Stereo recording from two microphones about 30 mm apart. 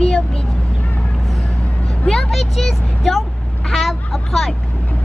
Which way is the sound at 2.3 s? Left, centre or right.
Centre.